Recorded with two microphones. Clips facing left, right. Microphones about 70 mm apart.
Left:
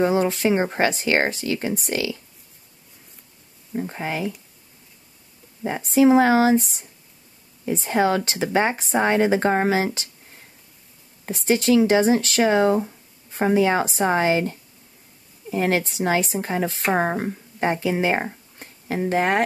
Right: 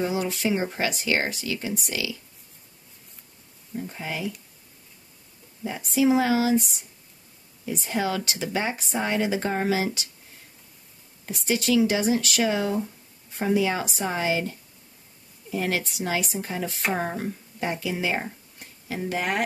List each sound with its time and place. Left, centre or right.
0.0 s speech: left
3.7 s speech: left
5.6 s speech: left
11.2 s speech: left